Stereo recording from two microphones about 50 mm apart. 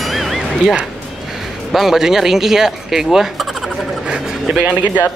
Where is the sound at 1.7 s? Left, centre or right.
Centre.